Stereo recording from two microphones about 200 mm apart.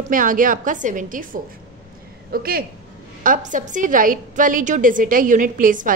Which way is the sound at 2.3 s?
50° right (ahead or behind).